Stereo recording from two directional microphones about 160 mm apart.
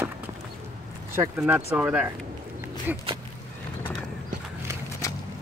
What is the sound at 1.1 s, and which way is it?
Speech, 15° right (ahead or behind).